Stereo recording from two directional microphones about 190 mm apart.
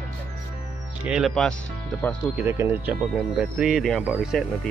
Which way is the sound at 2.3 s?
10° right (ahead or behind).